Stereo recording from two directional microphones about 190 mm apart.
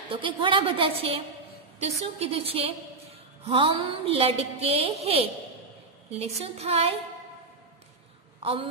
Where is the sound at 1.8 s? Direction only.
35° right (ahead or behind).